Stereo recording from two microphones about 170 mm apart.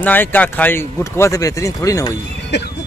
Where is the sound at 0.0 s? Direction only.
10° left (ahead or behind).